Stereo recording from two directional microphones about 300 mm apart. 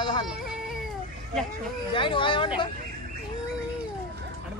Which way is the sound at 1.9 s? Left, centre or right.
Centre.